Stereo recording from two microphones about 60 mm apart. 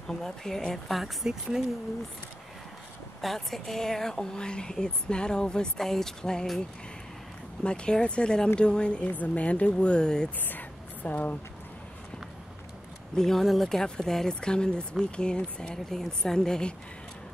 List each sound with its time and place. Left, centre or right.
0.0 s speech: centre
0.9 s speech: centre
3.2 s speech: centre
7.6 s speech: centre
10.4 s a sound: left
13.1 s speech: centre